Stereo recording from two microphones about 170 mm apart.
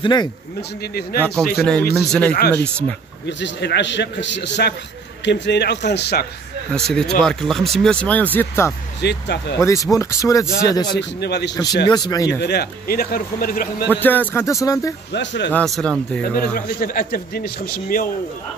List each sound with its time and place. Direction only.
0.0 s speech: 25° left (ahead or behind)
0.6 s speech: 70° left (ahead or behind)
1.6 s speech: 5° left (ahead or behind)
3.3 s a man's voice: 90° left
6.7 s speech: 5° left (ahead or behind)
9.0 s a man's voice: 80° left
9.9 s speech: 20° left (ahead or behind)
11.0 s a man's voice: 80° left
11.8 s speech: 20° left (ahead or behind)
12.4 s speech: 75° left (ahead or behind); by 13.8 s 60° left (ahead or behind)
13.9 s speech: 10° left (ahead or behind)
15.1 s a man's voice: 90° left
15.5 s speech: 5° left (ahead or behind)
16.2 s speech: 60° left (ahead or behind)